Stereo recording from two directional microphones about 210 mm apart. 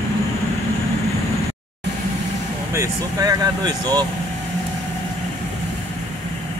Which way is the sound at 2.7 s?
15° right (ahead or behind).